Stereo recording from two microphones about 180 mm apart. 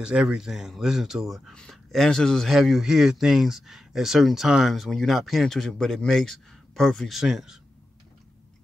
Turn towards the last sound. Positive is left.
turn(degrees=-5)  # may be behind; listen again after turning